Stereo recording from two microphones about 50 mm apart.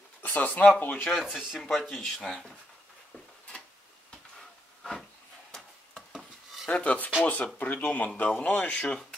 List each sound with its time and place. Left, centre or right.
0.2 s speech: left
1.1 s speech: centre
1.6 s speech: centre
4.4 s wood: centre
6.1 s dishes: centre
6.7 s speech: left